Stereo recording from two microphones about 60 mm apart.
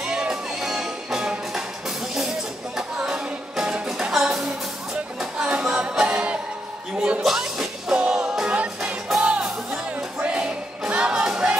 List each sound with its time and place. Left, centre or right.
0.0 s music: centre
3.0 s music: centre
7.2 s music: centre